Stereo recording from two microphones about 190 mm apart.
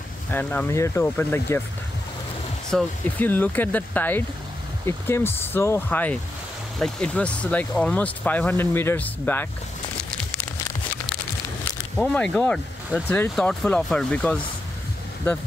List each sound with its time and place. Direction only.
0.3 s speech: 10° left (ahead or behind)
2.7 s speech: 10° left (ahead or behind)
12.0 s speech: 5° left (ahead or behind)